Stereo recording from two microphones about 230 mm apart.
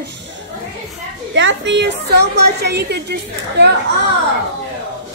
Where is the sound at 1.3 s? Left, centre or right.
Right.